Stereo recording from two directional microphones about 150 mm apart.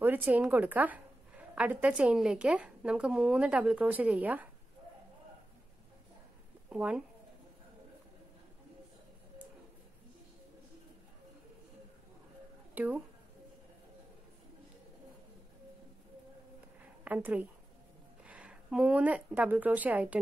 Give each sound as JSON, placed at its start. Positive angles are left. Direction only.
{"t": 0.0, "sound": "a woman's voice", "side_deg": -10}
{"t": 6.7, "sound": "speech", "side_deg": -10}
{"t": 12.7, "sound": "speech", "side_deg": -10}
{"t": 17.0, "sound": "a woman's voice", "side_deg": -10}